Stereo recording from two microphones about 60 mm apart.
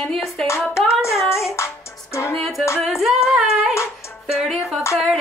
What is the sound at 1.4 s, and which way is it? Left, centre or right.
Music, left.